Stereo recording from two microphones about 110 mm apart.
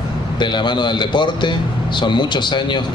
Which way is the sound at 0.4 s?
45° left (ahead or behind).